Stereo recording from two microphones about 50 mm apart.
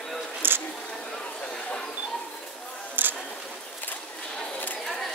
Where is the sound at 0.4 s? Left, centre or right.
Right.